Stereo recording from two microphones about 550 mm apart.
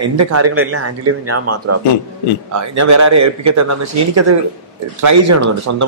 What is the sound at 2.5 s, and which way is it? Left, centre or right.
A man's voice, right.